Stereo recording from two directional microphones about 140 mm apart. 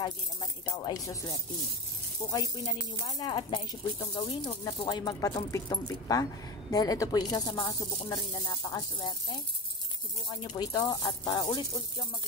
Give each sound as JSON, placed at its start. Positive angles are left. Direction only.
{"t": 0.0, "sound": "speech", "side_deg": 30}
{"t": 2.3, "sound": "speech", "side_deg": 25}
{"t": 10.4, "sound": "speech", "side_deg": 30}